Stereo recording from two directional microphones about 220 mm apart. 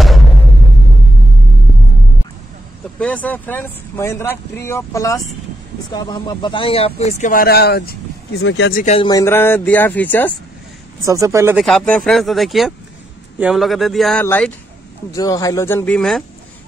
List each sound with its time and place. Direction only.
3.0 s speech: 5° left (ahead or behind); by 8.7 s 55° left (ahead or behind)
8.7 s speech: 35° left (ahead or behind)
9.0 s speech: 15° left (ahead or behind)
11.1 s speech: 15° right (ahead or behind)
11.6 s speech: 5° left (ahead or behind)